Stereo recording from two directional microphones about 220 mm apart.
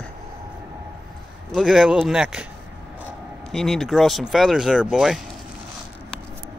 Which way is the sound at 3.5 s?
Centre (ahead or behind).